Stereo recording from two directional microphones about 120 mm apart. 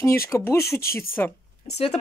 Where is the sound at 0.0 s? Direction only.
20° left (ahead or behind).